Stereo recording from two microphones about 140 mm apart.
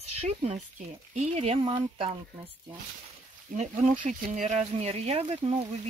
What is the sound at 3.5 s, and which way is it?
Speech, 65° right (ahead or behind).